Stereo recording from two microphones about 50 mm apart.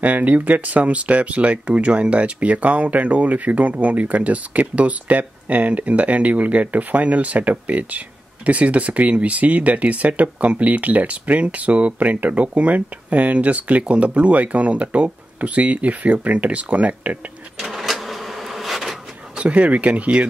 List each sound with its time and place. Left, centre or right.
0.0 s speech: right
17.6 s a sound: centre
19.3 s speech: right